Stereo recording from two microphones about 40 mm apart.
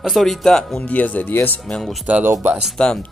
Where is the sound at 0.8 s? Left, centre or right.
Left.